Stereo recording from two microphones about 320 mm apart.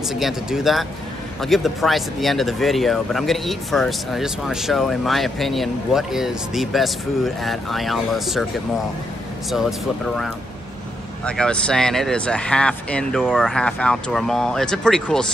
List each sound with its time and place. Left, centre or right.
0.1 s speech: centre
9.5 s speech: centre